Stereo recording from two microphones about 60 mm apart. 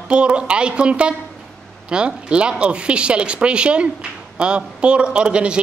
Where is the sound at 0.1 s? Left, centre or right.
Centre.